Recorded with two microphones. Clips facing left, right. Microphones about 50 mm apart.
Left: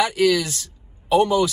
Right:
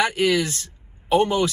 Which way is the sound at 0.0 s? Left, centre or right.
Right.